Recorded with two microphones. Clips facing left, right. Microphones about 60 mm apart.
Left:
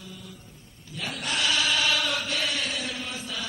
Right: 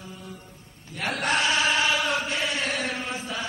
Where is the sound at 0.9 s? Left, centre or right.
Right.